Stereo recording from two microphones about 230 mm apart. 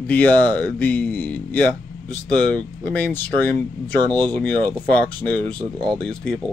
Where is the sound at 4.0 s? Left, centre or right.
Centre.